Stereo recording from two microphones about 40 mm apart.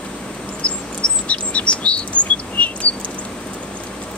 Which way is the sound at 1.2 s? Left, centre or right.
Left.